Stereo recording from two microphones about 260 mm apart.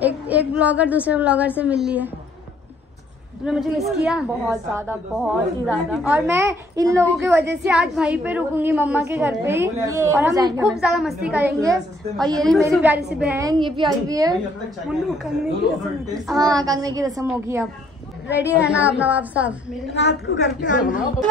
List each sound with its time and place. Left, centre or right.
0.0 s a woman's voice: centre
3.4 s a woman's voice: centre
10.8 s a woman's voice: centre
14.9 s a woman's voice: centre
16.3 s a woman's voice: centre
19.9 s a woman's voice: left